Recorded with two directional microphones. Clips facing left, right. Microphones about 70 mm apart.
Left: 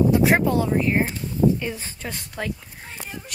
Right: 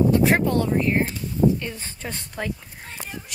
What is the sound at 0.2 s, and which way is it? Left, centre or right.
Speech, centre.